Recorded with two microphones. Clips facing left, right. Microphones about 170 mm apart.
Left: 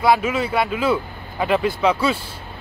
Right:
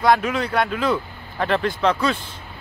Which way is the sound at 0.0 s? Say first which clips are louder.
Left 1 dB; 5° left (ahead or behind).